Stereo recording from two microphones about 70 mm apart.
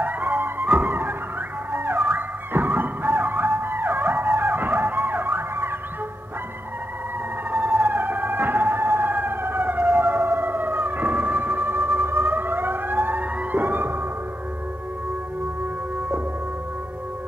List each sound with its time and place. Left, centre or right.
0.0 s music: right
7.8 s emergency vehicle: right